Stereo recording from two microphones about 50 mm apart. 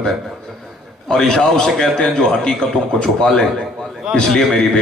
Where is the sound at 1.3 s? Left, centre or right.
Centre.